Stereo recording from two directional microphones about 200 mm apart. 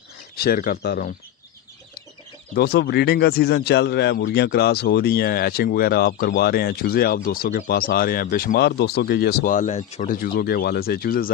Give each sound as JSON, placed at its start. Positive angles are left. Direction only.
{"t": 0.4, "sound": "speech", "side_deg": 45}
{"t": 2.5, "sound": "speech", "side_deg": 50}